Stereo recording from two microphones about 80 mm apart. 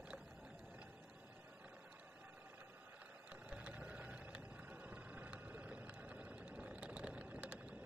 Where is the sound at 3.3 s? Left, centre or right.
Centre.